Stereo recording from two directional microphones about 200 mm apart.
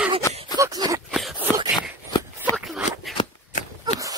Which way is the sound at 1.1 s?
Centre (ahead or behind).